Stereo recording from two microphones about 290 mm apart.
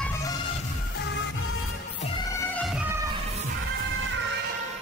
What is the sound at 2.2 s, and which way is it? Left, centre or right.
Music, centre.